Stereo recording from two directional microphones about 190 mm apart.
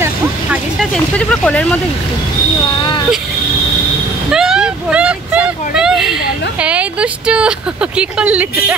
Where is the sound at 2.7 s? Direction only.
25° left (ahead or behind).